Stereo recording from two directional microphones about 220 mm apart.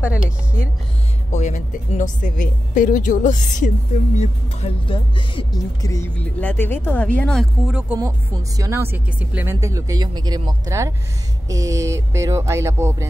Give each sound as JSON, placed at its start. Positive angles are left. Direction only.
{"t": 0.0, "sound": "speech", "side_deg": 10}
{"t": 1.3, "sound": "speech", "side_deg": 35}